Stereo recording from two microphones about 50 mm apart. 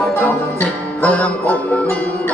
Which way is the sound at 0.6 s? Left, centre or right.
Left.